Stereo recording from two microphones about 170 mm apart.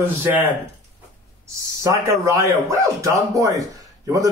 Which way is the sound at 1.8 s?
15° right (ahead or behind).